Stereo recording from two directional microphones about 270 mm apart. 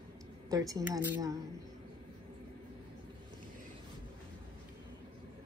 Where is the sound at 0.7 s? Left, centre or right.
Centre.